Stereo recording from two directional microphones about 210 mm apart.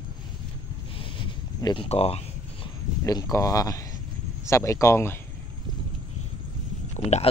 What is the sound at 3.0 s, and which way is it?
Speech, 15° left (ahead or behind).